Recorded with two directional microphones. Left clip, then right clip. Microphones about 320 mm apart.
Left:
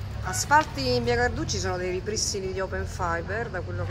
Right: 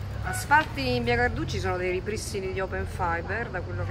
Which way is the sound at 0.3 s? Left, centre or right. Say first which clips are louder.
Left 1 dB; centre.